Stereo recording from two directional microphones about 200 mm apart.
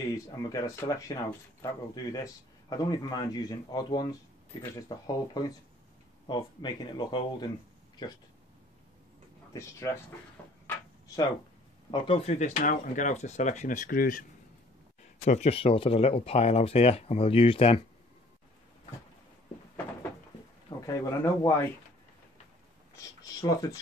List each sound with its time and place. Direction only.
0.1 s speech: 20° left (ahead or behind)
9.5 s speech: 15° left (ahead or behind)
11.9 s speech: 30° left (ahead or behind); by 14.2 s 45° left (ahead or behind)
15.1 s speech: 35° left (ahead or behind)
20.8 s speech: 15° left (ahead or behind)
23.2 s speech: 15° left (ahead or behind)